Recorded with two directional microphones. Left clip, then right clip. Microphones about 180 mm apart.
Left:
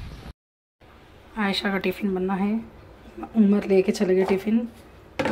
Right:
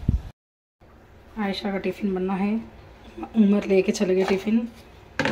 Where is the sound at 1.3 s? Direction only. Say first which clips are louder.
Left 3 dB; 5° left (ahead or behind).